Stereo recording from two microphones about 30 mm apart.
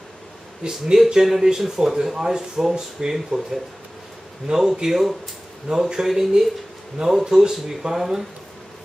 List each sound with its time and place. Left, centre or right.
0.6 s speech: right
0.9 s speech: centre
4.5 s speech: centre
7.9 s speech: centre